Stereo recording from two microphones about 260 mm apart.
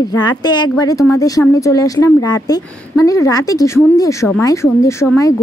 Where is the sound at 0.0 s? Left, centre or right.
Centre.